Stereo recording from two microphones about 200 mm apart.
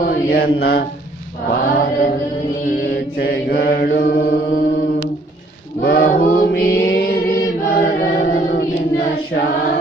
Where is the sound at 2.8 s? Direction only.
55° left (ahead or behind).